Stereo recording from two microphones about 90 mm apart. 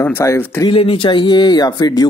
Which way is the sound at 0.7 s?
85° left.